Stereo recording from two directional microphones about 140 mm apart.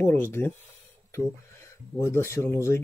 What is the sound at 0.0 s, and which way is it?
Speech, 15° left (ahead or behind).